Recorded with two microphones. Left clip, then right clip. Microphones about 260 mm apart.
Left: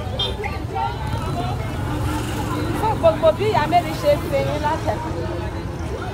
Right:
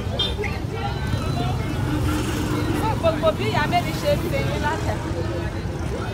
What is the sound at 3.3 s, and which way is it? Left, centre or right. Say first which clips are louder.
Speech: left 4 dB; left.